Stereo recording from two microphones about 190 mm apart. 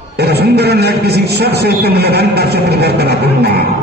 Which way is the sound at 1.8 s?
55° right (ahead or behind).